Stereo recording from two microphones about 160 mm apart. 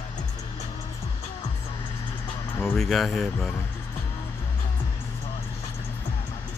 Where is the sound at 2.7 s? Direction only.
Centre (ahead or behind).